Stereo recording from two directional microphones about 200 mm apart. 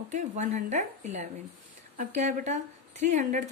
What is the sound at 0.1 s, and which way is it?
Speech, 40° right (ahead or behind).